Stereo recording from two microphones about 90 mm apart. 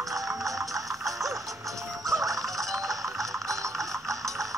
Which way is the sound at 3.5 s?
35° right (ahead or behind).